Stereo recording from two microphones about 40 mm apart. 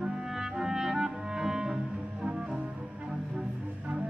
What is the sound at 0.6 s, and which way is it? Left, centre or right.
Clarinet, centre.